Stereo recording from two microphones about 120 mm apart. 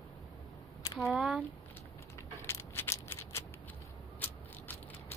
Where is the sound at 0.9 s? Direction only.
Centre (ahead or behind).